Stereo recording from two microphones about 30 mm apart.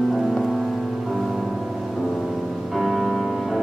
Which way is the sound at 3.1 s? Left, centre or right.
Centre.